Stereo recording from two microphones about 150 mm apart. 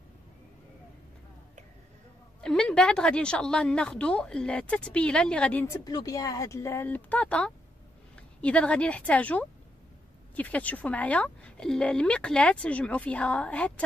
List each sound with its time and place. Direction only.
2.4 s speech: 5° left (ahead or behind)
5.9 s speech: 25° left (ahead or behind); by 13.8 s 10° left (ahead or behind)